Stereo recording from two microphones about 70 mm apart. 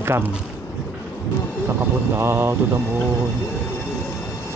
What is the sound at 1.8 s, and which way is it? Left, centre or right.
Speech, right.